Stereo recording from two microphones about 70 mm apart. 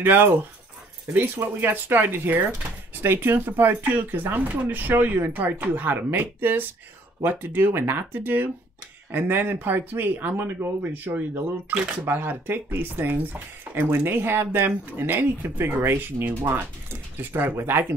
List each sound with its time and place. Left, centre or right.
0.0 s speech: right
12.0 s speech: right